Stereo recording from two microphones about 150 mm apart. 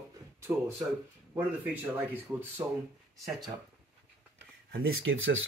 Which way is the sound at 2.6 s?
20° right (ahead or behind).